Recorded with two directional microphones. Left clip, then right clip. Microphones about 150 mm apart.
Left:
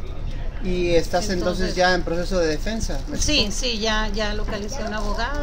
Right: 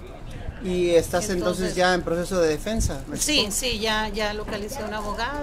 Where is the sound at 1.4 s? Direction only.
20° right (ahead or behind).